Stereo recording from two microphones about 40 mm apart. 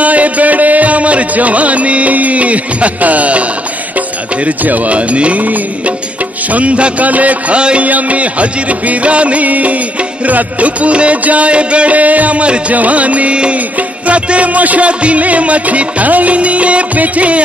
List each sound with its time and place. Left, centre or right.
0.0 s music: right
4.5 s music: right